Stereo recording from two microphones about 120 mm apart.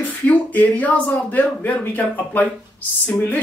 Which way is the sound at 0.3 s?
15° left (ahead or behind).